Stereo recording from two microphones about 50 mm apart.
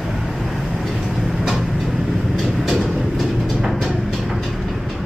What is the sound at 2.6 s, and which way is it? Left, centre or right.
Train, centre.